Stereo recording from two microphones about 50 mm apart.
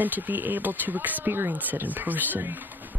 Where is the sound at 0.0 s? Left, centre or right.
Right.